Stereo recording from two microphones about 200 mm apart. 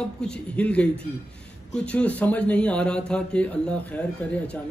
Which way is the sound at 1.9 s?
5° left (ahead or behind).